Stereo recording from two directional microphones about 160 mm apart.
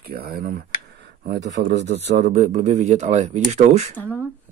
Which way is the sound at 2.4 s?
45° right (ahead or behind).